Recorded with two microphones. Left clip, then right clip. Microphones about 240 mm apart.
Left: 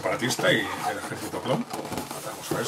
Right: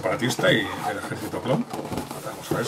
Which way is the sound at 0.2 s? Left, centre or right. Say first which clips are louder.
Right 2 dB; centre.